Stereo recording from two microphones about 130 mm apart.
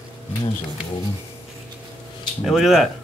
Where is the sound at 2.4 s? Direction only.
5° right (ahead or behind).